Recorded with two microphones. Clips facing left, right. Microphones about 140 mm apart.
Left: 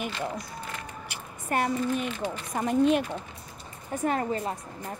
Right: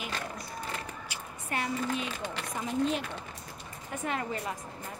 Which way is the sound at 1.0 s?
55° left (ahead or behind).